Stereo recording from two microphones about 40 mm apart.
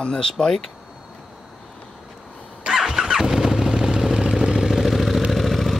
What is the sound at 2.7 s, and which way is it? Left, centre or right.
Motorcycle, centre.